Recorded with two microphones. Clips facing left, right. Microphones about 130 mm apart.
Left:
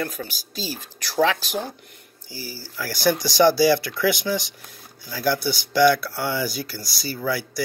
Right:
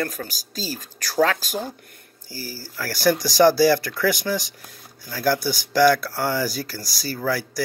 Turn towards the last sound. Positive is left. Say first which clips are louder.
# right 1 dB
turn(degrees=-40)  # may be behind; listen again after turning